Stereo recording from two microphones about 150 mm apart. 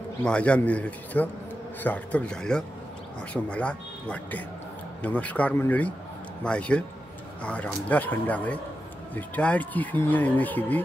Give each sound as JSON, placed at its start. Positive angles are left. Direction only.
{"t": 0.2, "sound": "speech", "side_deg": 5}